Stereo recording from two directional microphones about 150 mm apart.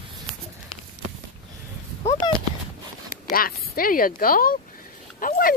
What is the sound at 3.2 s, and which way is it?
Speech, 75° left (ahead or behind).